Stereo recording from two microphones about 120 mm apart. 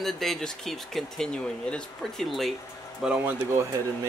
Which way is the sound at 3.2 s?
15° right (ahead or behind).